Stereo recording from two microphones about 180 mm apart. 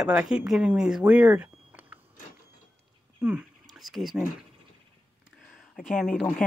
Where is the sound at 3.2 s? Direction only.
5° right (ahead or behind).